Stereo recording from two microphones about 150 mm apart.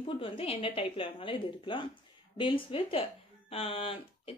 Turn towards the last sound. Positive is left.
turn(degrees=40)  # may be behind; listen again after turning